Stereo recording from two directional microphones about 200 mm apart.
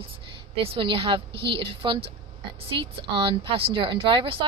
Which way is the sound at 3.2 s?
25° right (ahead or behind).